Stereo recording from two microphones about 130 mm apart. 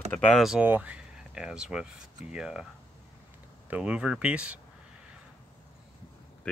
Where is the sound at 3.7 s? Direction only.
10° right (ahead or behind).